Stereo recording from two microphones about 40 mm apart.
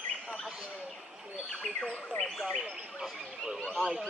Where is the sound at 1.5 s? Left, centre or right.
Centre.